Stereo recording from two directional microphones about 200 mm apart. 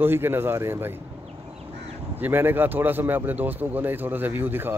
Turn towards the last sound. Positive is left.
turn(degrees=-10)  # may be behind; listen again after turning